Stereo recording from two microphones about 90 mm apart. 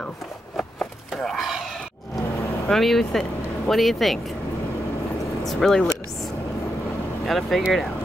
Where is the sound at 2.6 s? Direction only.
5° left (ahead or behind).